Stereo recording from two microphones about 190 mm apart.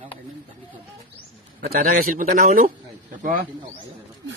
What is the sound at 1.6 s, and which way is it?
A man's voice, 50° right (ahead or behind).